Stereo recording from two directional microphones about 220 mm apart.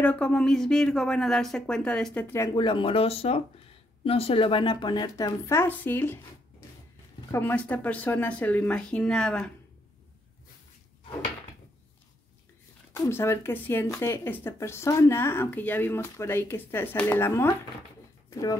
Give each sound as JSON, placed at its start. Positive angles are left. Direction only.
{"t": 0.0, "sound": "speech", "side_deg": 5}
{"t": 7.2, "sound": "speech", "side_deg": 10}
{"t": 12.9, "sound": "speech", "side_deg": 10}